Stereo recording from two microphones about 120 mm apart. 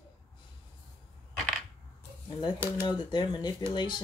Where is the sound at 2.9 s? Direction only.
40° left (ahead or behind).